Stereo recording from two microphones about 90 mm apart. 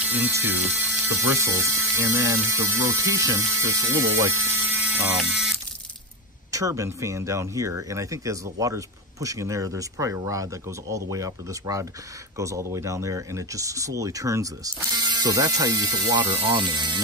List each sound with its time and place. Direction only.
0.3 s speech: 25° right (ahead or behind)
4.7 s a sound: 10° right (ahead or behind)
5.1 s speech: centre (ahead or behind)
6.5 s speech: 35° right (ahead or behind)
16.2 s speech: 80° right; by 17.0 s 55° right (ahead or behind)